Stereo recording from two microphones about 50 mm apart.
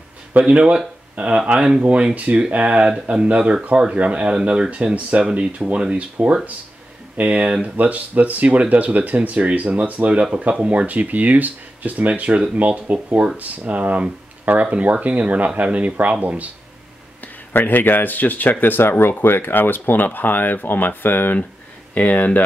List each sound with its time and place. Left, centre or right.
0.3 s speech: right
1.5 s speech: centre
1.8 s speech: right
7.2 s speech: right
12.1 s speech: right
17.5 s speech: left
21.9 s speech: left